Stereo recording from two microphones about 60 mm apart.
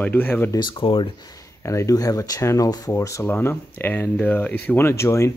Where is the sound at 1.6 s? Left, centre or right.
Left.